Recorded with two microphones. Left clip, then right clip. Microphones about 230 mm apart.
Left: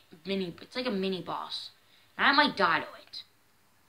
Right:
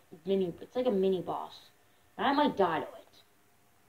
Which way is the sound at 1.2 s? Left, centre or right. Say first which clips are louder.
Left 2 dB; left.